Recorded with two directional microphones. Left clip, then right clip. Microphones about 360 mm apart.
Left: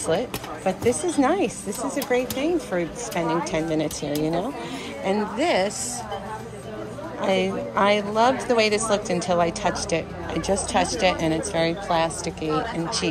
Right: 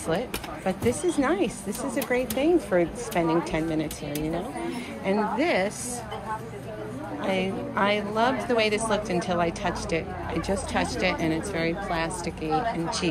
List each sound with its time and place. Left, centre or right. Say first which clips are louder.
0.7 s a woman's voice: left 3 dB; centre
7.2 s a woman's voice: left 5 dB; centre